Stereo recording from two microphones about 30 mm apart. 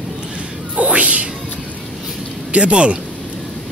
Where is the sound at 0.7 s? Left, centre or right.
Right.